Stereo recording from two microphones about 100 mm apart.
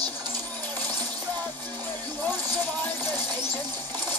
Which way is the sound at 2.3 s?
20° left (ahead or behind).